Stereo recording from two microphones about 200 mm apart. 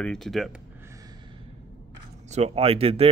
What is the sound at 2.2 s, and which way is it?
Speech, 35° right (ahead or behind).